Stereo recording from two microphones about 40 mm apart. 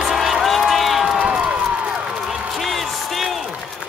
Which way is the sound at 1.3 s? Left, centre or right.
Right.